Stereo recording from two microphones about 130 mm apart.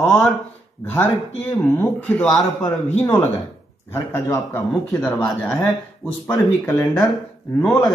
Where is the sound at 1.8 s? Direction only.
15° left (ahead or behind).